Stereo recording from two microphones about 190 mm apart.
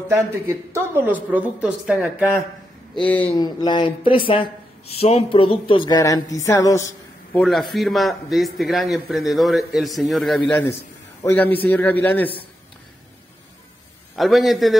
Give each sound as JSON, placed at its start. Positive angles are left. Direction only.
{"t": 0.1, "sound": "a woman's voice", "side_deg": -15}
{"t": 3.1, "sound": "a man's voice", "side_deg": 10}
{"t": 3.3, "sound": "speech", "side_deg": 20}
{"t": 7.3, "sound": "a man's voice", "side_deg": 0}
{"t": 14.1, "sound": "a man's voice", "side_deg": 0}